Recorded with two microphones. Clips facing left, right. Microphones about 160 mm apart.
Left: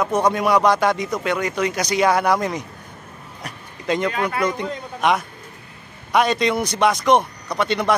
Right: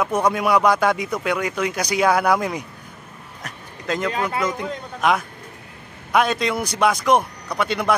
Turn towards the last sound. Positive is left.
turn(degrees=-5)  # may be behind; listen again after turning